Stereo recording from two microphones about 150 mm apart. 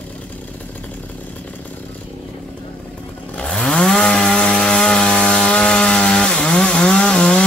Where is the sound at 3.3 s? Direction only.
5° left (ahead or behind).